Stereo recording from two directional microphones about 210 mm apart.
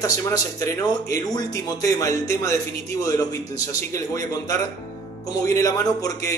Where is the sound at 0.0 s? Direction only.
15° left (ahead or behind).